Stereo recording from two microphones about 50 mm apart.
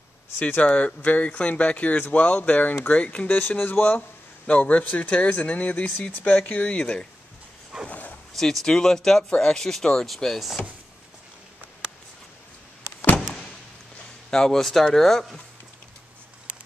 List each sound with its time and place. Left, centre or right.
0.6 s speech: left
3.3 s speech: left
4.5 s speech: left
6.7 s speech: centre
7.9 s dog: left
8.4 s speech: centre
14.3 s speech: centre